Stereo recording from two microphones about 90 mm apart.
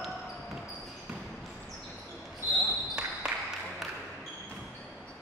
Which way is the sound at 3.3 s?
5° right (ahead or behind).